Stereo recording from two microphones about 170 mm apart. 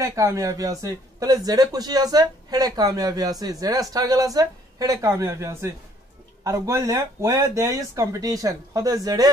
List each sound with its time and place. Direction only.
0.0 s a man's voice: 20° right (ahead or behind)